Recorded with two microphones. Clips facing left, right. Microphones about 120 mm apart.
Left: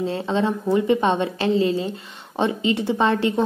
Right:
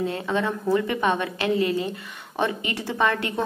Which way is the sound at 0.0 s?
25° left (ahead or behind).